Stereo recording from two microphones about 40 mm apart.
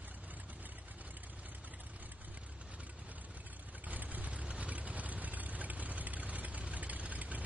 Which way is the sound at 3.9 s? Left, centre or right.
Right.